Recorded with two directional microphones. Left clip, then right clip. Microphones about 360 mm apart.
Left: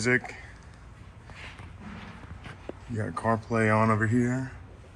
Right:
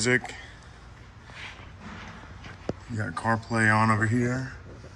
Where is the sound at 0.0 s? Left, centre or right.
Centre.